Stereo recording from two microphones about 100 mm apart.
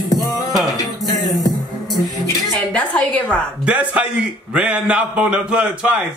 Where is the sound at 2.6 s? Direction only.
15° left (ahead or behind).